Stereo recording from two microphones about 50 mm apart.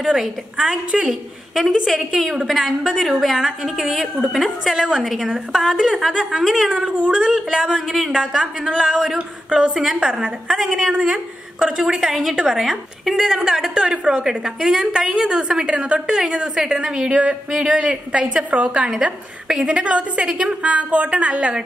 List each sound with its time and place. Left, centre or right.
0.2 s a woman's voice: centre
1.5 s a woman's voice: centre
6.8 s a woman's voice: centre
15.6 s a woman's voice: right
17.1 s a woman's voice: right
19.4 s a woman's voice: centre